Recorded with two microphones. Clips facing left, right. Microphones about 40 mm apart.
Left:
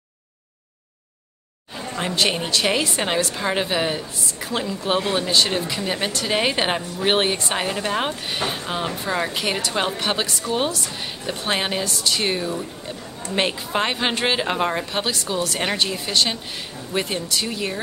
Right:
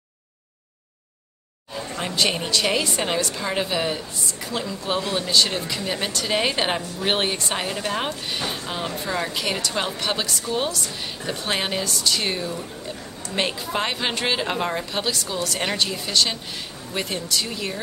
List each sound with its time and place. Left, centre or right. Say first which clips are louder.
1.8 s a woman's voice: left 2 dB; centre
5.2 s a woman's voice: left 1 dB; centre